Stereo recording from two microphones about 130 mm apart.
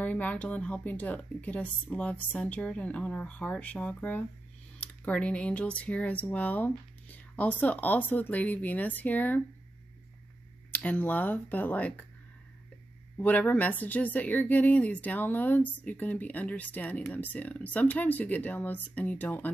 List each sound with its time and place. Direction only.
0.0 s speech: 10° left (ahead or behind)
10.7 s speech: 10° left (ahead or behind)
13.2 s speech: 10° left (ahead or behind)